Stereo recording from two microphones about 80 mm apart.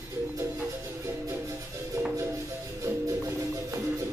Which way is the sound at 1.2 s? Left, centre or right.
Right.